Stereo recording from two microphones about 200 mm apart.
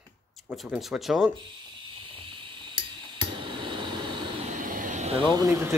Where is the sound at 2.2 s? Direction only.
25° right (ahead or behind).